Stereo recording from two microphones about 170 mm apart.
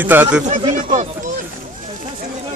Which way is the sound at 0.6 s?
30° right (ahead or behind).